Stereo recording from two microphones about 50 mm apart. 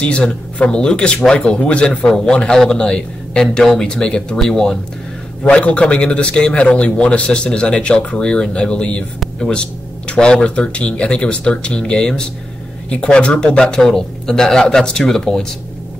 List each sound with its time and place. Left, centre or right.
0.0 s a man's voice: left
2.5 s a man's voice: centre
5.4 s a man's voice: left; by 15.4 s centre